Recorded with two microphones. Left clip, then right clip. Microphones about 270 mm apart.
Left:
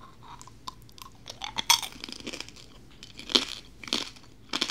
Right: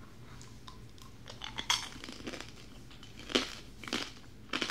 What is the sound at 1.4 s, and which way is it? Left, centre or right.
Chink, left.